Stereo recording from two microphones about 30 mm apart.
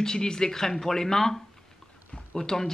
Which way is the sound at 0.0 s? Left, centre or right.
Left.